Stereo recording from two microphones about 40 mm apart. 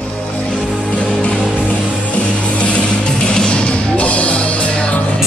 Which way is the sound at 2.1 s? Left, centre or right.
Left.